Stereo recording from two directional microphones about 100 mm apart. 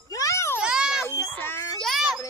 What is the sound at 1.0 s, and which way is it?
Baby cry, 20° left (ahead or behind).